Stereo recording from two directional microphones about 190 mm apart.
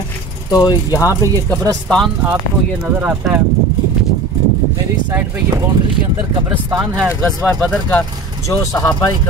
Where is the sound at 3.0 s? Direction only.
10° right (ahead or behind).